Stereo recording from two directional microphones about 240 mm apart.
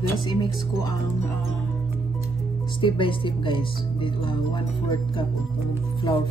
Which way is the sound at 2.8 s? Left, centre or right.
Left.